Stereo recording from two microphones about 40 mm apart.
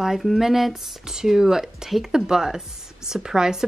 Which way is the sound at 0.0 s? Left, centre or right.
Centre.